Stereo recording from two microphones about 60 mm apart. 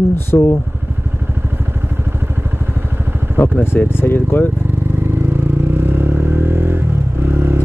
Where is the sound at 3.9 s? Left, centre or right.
Left.